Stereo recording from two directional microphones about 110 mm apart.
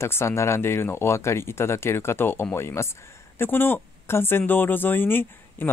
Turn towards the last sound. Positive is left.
turn(degrees=20)  # may be behind; listen again after turning